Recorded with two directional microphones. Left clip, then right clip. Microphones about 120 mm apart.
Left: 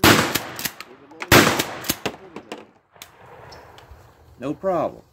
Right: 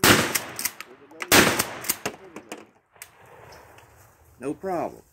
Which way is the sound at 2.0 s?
25° right (ahead or behind).